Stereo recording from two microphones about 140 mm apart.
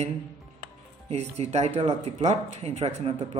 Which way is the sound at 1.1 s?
50° right (ahead or behind).